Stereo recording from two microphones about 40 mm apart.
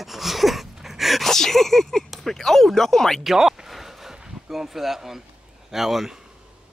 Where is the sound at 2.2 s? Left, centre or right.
Centre.